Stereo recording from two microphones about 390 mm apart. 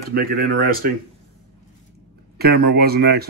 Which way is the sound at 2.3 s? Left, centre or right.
Right.